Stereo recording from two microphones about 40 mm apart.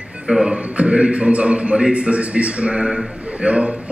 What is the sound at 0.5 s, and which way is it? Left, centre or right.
A man's voice, right.